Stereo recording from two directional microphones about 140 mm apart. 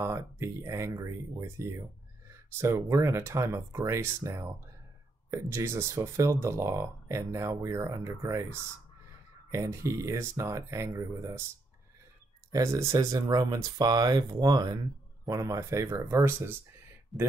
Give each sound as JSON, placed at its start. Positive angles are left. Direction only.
{"t": 0.0, "sound": "speech", "side_deg": -20}
{"t": 12.5, "sound": "speech", "side_deg": -25}
{"t": 17.1, "sound": "speech", "side_deg": 0}